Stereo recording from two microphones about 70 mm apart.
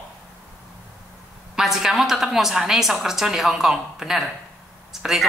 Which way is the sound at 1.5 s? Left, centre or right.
Centre.